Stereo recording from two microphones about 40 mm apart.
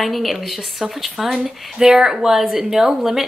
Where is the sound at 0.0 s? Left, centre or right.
Centre.